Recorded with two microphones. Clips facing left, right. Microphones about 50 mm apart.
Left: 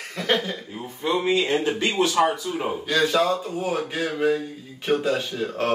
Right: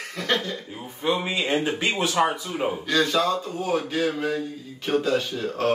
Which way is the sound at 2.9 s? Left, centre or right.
Centre.